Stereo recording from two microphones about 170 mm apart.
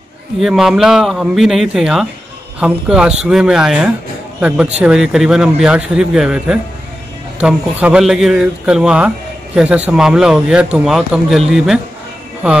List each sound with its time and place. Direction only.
0.4 s speech: centre (ahead or behind)